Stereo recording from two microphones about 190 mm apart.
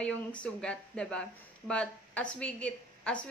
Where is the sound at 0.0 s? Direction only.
5° left (ahead or behind).